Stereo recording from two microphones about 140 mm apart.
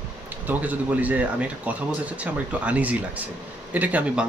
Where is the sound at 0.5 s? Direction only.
10° right (ahead or behind).